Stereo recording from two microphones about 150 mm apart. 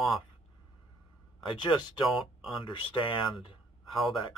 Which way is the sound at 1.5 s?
30° left (ahead or behind).